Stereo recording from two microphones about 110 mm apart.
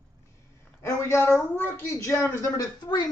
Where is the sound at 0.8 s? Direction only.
25° left (ahead or behind).